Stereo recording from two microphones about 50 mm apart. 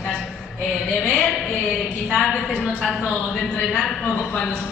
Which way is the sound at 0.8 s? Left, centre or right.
Centre.